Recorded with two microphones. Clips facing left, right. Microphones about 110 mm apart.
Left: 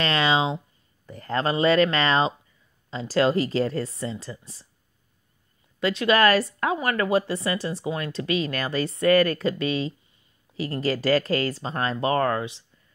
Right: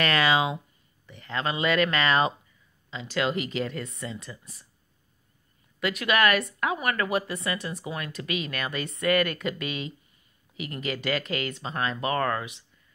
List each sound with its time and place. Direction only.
0.0 s speech: 25° left (ahead or behind)
1.0 s speech: 40° left (ahead or behind)
5.8 s speech: 30° left (ahead or behind)